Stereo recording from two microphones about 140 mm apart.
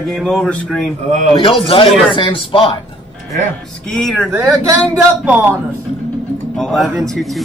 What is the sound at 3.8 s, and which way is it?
Speech, centre (ahead or behind).